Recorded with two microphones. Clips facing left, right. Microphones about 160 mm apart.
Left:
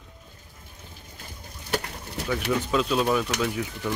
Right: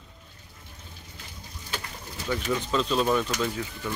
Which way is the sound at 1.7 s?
65° left (ahead or behind).